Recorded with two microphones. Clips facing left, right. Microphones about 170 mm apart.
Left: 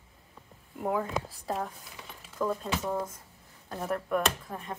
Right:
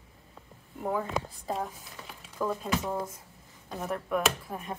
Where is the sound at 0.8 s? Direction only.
5° left (ahead or behind).